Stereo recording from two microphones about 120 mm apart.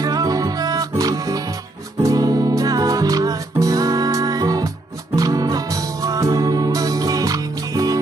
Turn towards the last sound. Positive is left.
turn(degrees=-30)  # may be behind; listen again after turning